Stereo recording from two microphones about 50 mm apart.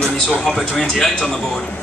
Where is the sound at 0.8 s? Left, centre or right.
Centre.